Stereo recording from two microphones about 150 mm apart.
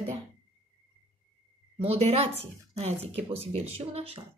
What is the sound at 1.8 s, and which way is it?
Speech, 40° right (ahead or behind).